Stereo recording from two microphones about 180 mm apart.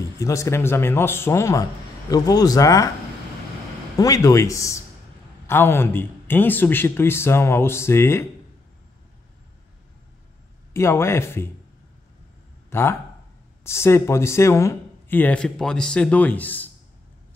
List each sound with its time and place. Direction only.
0.2 s speech: 15° left (ahead or behind)
4.0 s speech: 20° left (ahead or behind)
10.7 s speech: 15° left (ahead or behind)
12.6 s a sound: 15° left (ahead or behind)
13.7 s speech: 15° left (ahead or behind)